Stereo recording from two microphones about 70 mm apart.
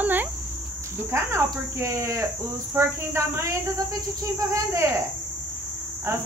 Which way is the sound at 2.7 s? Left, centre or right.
Right.